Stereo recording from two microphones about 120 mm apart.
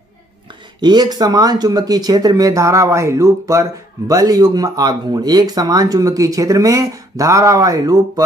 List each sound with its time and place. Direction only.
0.7 s speech: 35° right (ahead or behind)